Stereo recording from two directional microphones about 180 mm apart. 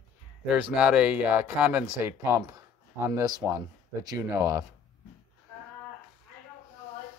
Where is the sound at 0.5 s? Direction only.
10° right (ahead or behind).